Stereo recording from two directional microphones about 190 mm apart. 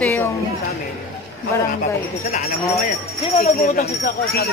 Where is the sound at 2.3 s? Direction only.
35° left (ahead or behind).